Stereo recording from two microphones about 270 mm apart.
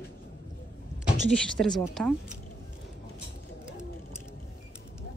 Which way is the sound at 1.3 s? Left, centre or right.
Centre.